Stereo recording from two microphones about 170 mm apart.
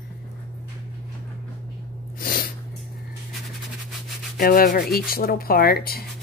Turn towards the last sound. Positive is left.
turn(degrees=65)  # may be behind; listen again after turning